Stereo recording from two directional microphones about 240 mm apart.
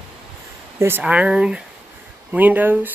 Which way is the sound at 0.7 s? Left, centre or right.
Centre.